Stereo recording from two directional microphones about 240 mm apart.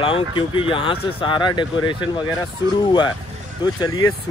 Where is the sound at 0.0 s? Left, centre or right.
Left.